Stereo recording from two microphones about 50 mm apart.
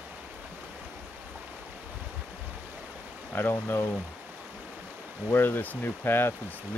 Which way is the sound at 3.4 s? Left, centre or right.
Left.